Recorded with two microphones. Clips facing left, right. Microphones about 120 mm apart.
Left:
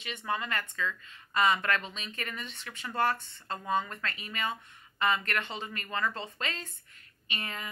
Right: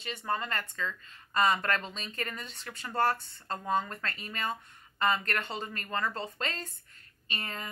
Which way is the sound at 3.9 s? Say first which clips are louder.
Even; 35° right (ahead or behind).